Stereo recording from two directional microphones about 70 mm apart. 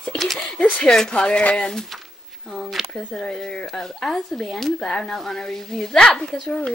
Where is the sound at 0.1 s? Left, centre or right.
Centre.